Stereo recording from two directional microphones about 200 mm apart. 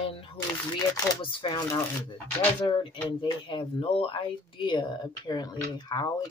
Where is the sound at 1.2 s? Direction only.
25° left (ahead or behind).